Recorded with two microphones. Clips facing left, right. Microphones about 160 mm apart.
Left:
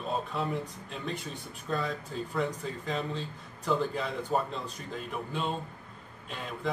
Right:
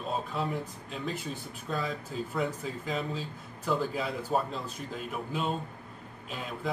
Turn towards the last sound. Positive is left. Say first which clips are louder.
# even
turn(degrees=0)  # may be behind; listen again after turning